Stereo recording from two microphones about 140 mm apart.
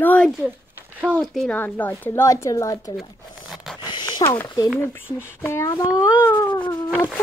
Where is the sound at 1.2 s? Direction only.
5° left (ahead or behind); by 2.9 s 25° left (ahead or behind).